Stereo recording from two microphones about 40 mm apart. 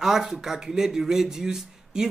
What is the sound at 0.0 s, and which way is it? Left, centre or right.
Speech, centre.